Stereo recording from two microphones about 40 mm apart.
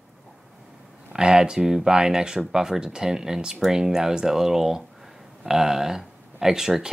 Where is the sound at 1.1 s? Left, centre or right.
Centre.